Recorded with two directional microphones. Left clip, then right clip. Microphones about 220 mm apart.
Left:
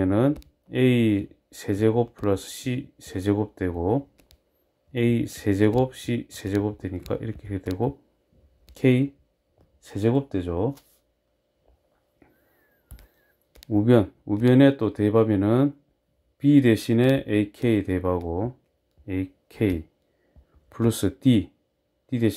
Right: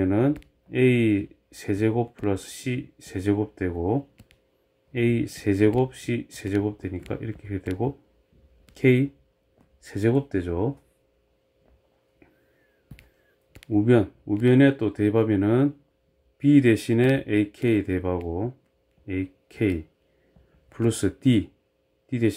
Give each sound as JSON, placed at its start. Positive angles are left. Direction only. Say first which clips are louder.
{"t": 0.0, "sound": "a sound", "louder": "left 1 dB", "side_deg": 15}
{"t": 0.7, "sound": "speech", "louder": "right 1 dB", "side_deg": 15}
{"t": 8.7, "sound": "speech", "louder": "right 1 dB", "side_deg": 10}
{"t": 13.7, "sound": "speech", "louder": "left 1 dB", "side_deg": 15}